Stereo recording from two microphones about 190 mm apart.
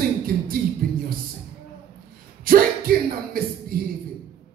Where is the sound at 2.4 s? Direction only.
50° right (ahead or behind).